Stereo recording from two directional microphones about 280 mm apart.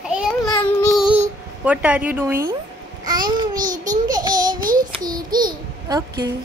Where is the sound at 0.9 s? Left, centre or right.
Centre.